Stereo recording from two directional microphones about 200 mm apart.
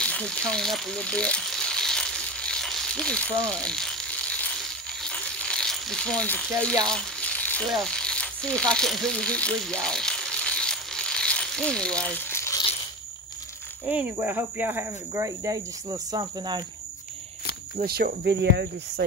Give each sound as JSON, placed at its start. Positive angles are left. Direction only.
{"t": 0.0, "sound": "a sound", "side_deg": 5}
{"t": 13.8, "sound": "speech", "side_deg": -10}
{"t": 17.7, "sound": "speech", "side_deg": -50}